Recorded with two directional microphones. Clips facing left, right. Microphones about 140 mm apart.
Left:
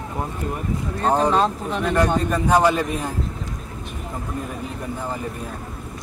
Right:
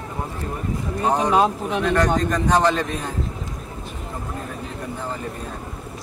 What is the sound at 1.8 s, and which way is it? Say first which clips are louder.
A man's voice: even; 10° left (ahead or behind).